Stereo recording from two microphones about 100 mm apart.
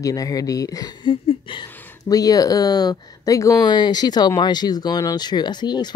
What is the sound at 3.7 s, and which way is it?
Speech, 45° left (ahead or behind).